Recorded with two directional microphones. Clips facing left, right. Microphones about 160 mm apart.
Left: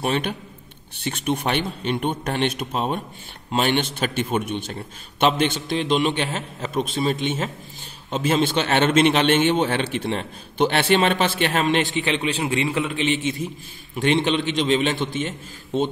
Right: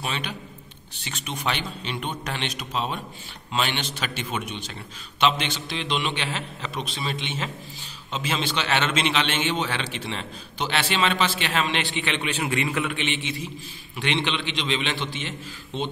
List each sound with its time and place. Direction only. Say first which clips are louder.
0.0 s a man's voice: left 8 dB; 55° left (ahead or behind)